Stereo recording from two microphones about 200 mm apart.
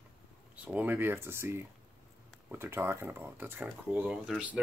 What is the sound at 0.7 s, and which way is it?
Speech, 10° right (ahead or behind).